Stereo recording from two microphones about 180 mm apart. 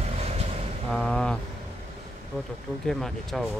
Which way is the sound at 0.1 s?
35° right (ahead or behind).